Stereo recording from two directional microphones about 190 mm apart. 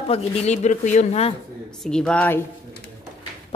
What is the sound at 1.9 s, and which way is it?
Speech, 5° left (ahead or behind).